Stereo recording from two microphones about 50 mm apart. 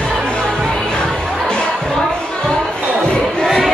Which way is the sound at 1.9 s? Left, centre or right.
Centre.